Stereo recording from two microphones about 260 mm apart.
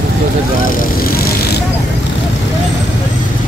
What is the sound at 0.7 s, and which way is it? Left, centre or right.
Speech, left.